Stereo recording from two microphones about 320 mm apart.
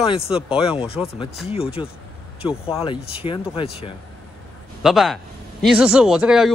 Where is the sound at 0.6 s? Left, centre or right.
Centre.